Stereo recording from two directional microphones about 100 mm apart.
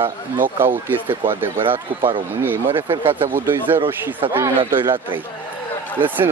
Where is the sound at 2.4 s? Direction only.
20° right (ahead or behind).